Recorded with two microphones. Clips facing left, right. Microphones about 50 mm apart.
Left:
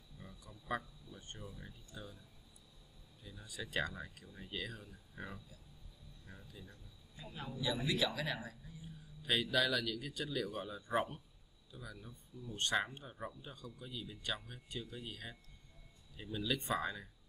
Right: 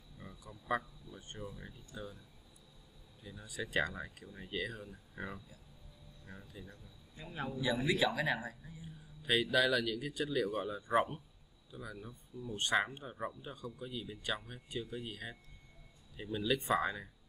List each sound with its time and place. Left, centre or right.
0.2 s a sound: centre
3.3 s speech: centre
9.2 s speech: centre